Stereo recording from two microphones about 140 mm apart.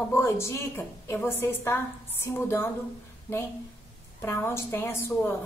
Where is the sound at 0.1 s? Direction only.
20° left (ahead or behind).